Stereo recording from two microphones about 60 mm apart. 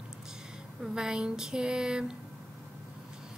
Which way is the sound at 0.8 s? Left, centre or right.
Centre.